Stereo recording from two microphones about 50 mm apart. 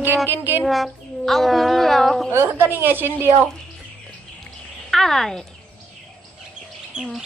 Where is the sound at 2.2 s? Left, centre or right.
Right.